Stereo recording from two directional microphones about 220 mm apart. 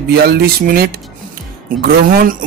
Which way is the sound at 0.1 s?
45° right (ahead or behind).